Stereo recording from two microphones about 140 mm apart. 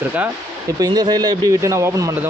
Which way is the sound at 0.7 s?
30° right (ahead or behind).